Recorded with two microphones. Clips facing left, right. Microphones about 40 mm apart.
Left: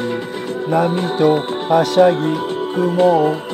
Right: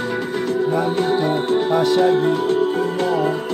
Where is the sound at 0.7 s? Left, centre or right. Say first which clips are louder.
Left 5 dB; left.